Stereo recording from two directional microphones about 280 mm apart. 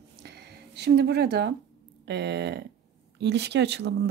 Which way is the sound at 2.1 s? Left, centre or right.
Right.